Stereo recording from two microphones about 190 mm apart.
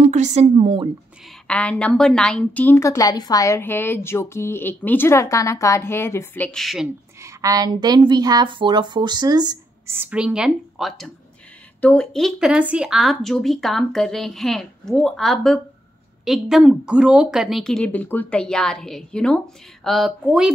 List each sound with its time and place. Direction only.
0.0 s a woman's voice: 40° right (ahead or behind)
1.5 s a woman's voice: 5° left (ahead or behind)
7.2 s a woman's voice: 15° right (ahead or behind)